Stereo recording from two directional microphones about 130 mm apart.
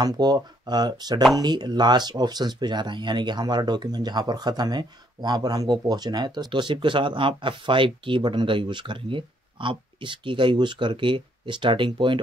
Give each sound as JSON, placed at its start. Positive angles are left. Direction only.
{"t": 0.0, "sound": "speech", "side_deg": -35}